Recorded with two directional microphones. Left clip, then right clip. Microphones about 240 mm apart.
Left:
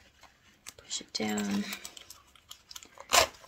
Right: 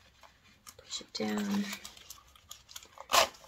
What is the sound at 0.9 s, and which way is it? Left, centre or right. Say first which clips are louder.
Speech: left 2 dB; left.